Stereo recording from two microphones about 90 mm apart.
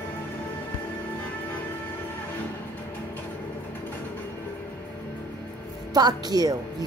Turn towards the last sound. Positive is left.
turn(degrees=-45)  # may be behind; listen again after turning